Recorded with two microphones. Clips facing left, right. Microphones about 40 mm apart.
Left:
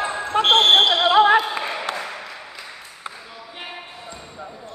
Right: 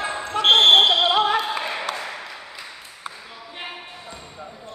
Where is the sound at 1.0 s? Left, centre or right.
Left.